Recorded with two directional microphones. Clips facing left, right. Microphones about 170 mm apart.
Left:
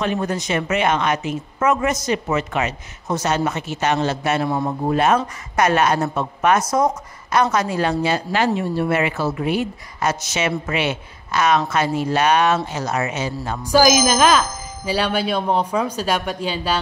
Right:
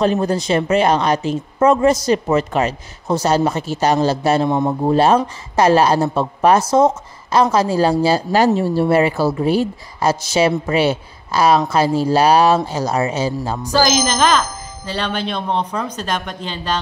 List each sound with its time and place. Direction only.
0.0 s speech: 35° right (ahead or behind)
4.5 s speech: 25° right (ahead or behind)
13.7 s speech: 10° left (ahead or behind)